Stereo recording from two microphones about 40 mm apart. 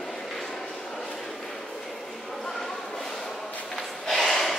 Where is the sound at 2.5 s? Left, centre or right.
Centre.